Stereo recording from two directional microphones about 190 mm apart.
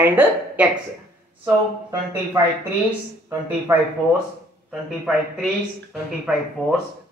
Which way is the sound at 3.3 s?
15° right (ahead or behind).